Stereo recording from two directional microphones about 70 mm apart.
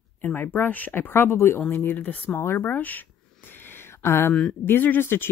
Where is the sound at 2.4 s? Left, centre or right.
Left.